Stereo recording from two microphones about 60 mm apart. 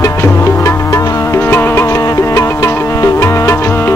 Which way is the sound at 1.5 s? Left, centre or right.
Left.